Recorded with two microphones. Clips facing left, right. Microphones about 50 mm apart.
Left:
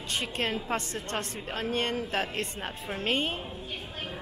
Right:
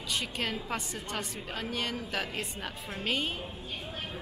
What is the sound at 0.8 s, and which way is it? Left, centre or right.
A woman's voice, left.